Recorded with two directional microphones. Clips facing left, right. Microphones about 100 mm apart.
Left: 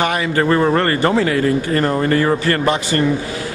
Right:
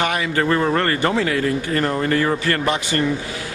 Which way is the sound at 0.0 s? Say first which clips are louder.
Left 3 dB; 35° left (ahead or behind).